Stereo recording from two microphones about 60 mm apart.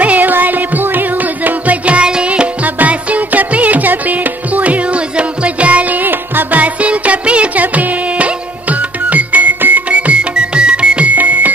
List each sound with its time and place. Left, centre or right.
0.0 s music: right